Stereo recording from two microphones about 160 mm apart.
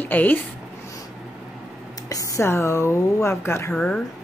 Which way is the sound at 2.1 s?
20° left (ahead or behind).